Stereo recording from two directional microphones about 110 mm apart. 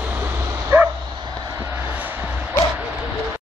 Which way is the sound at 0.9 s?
40° right (ahead or behind).